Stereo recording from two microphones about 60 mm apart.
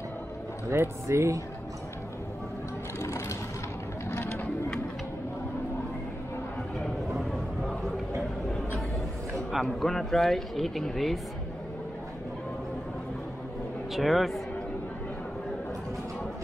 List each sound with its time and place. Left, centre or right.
0.7 s speech: right
3.0 s sewing machine: left
4.1 s a sound: left
7.2 s a sound: centre
9.6 s speech: centre
13.9 s speech: centre